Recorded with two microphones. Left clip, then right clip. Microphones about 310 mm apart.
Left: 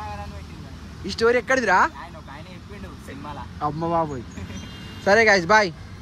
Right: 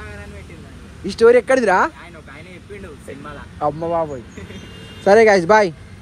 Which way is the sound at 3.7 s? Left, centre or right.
Centre.